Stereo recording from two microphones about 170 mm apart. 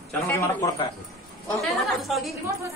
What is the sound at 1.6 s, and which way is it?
Speech, centre (ahead or behind).